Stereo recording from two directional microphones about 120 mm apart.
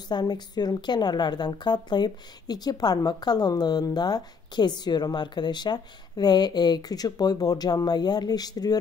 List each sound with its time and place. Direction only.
0.1 s a woman's voice: 35° left (ahead or behind)